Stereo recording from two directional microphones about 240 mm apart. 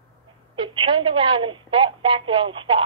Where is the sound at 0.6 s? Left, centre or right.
Right.